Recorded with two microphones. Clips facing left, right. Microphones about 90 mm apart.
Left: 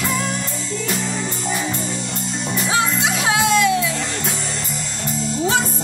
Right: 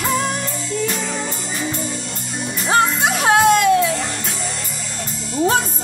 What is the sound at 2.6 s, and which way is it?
Music, 50° right (ahead or behind).